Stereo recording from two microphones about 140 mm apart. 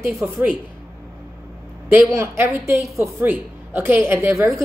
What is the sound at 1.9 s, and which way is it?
A woman's voice, 20° right (ahead or behind).